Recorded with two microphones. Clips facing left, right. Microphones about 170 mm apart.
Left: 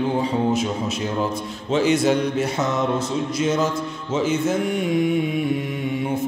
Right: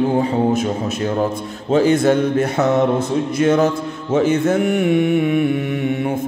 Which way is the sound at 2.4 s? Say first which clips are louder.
Right 6 dB; 55° right (ahead or behind).